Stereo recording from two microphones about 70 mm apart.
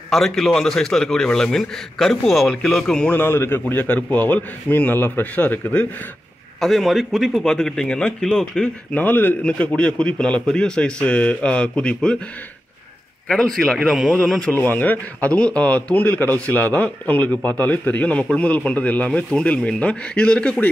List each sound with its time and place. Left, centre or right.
0.1 s a man's voice: centre
3.1 s a man's voice: left
3.6 s a man's voice: left
6.6 s a man's voice: centre
7.4 s a man's voice: centre
8.9 s a man's voice: left
9.4 s a man's voice: centre
13.3 s a man's voice: centre
13.8 s a man's voice: centre
14.5 s a man's voice: left